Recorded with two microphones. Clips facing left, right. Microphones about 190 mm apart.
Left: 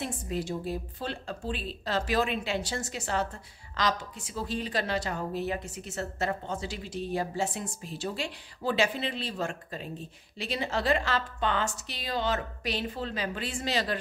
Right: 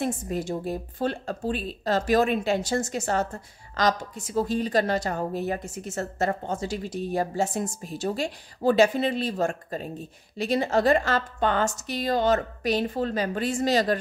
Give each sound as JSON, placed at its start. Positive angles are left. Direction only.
{"t": 0.0, "sound": "a woman's voice", "side_deg": -50}